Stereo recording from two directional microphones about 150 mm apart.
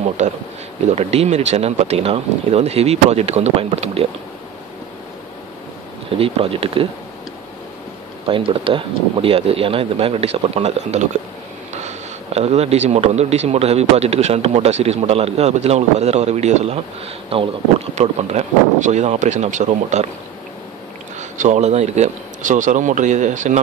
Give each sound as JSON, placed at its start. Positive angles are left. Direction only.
{"t": 0.2, "sound": "a man's voice", "side_deg": -55}
{"t": 6.1, "sound": "speech", "side_deg": -40}
{"t": 8.3, "sound": "speech", "side_deg": -35}
{"t": 12.4, "sound": "a man's voice", "side_deg": -45}
{"t": 21.2, "sound": "a man's voice", "side_deg": -55}